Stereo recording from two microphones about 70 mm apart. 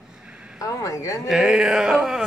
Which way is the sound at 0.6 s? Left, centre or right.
Left.